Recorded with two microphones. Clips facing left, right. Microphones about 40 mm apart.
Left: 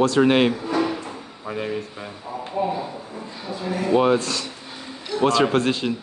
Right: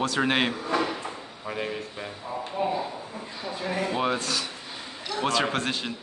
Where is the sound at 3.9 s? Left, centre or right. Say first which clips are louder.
Left 8 dB; centre.